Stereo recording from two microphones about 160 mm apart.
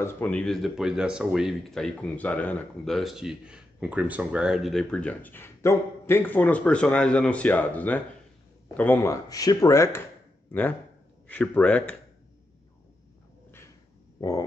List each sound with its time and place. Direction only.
0.0 s speech: 10° left (ahead or behind)